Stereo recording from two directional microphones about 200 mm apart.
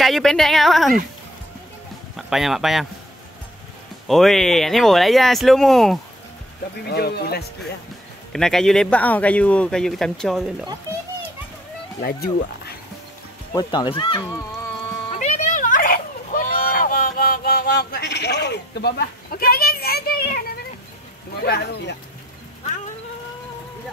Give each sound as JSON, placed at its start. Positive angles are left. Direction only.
{"t": 0.0, "sound": "a man's voice", "side_deg": 0}
{"t": 2.1, "sound": "speech", "side_deg": 0}
{"t": 4.1, "sound": "a man's voice", "side_deg": 0}
{"t": 6.9, "sound": "speech", "side_deg": 50}
{"t": 8.3, "sound": "a man's voice", "side_deg": 0}
{"t": 12.0, "sound": "speech", "side_deg": 50}
{"t": 13.6, "sound": "speech", "side_deg": 20}
{"t": 15.1, "sound": "a sound", "side_deg": 35}
{"t": 21.5, "sound": "speech", "side_deg": 55}